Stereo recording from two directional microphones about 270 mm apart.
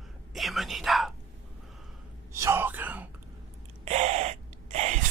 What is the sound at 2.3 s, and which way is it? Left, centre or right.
Whispering, centre.